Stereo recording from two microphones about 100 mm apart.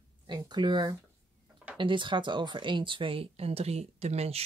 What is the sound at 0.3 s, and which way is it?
Speech, 45° right (ahead or behind).